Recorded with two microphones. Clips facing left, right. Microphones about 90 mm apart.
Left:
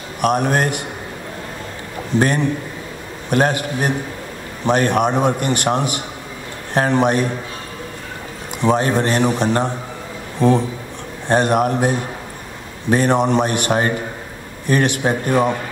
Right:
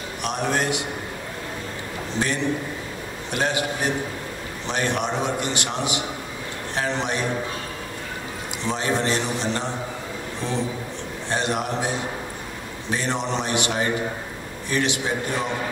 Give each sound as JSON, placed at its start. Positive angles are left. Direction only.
{"t": 0.2, "sound": "a man's voice", "side_deg": 50}
{"t": 2.1, "sound": "a man's voice", "side_deg": 50}
{"t": 8.6, "sound": "a man's voice", "side_deg": 50}